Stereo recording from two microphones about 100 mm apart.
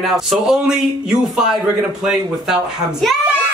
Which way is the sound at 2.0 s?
5° right (ahead or behind).